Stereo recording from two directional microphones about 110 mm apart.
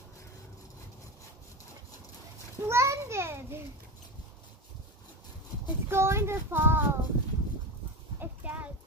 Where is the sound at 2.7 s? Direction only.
25° right (ahead or behind).